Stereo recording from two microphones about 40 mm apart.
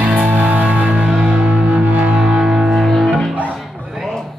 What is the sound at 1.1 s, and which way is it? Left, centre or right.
Music, right.